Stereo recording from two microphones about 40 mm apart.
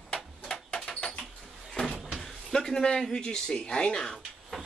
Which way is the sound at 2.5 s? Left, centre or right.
Centre.